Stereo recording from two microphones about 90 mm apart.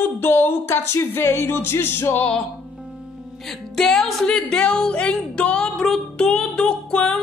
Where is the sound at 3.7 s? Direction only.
5° left (ahead or behind).